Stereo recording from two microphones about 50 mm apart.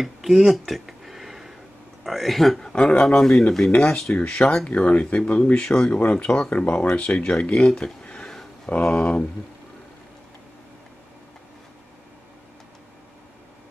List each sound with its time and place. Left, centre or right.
0.0 s a sound: centre
2.0 s speech: centre
2.7 s speech: left
5.9 s speech: left
6.5 s speech: left; by 7.9 s centre
8.0 s a sound: left
8.6 s speech: left